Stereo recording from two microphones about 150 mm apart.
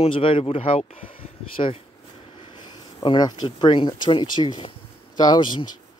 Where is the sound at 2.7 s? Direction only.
30° left (ahead or behind).